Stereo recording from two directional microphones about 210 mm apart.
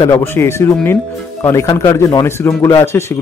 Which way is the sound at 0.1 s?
10° left (ahead or behind).